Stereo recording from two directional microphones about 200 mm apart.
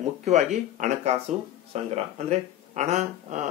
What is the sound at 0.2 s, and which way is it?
Speech, 35° right (ahead or behind).